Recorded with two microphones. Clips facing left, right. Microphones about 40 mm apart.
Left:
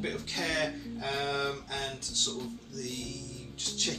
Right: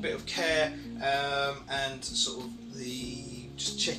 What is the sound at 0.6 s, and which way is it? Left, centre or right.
Speech, centre.